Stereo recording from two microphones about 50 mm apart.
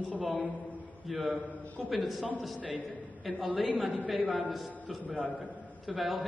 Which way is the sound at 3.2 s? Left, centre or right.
Centre.